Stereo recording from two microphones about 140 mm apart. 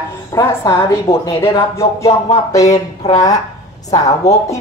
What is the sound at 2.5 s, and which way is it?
Speech, 25° left (ahead or behind).